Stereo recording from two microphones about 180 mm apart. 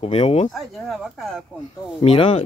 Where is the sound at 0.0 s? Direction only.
35° left (ahead or behind).